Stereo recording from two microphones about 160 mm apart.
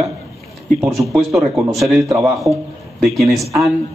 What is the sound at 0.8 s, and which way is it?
A man's voice, centre (ahead or behind).